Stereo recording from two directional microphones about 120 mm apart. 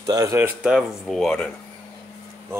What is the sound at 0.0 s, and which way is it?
Speech, 30° right (ahead or behind).